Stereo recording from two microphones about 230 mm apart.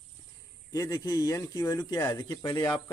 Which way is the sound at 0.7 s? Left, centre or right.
Centre.